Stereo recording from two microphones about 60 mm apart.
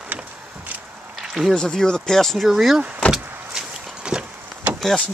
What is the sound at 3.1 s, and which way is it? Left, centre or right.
Vehicle, centre.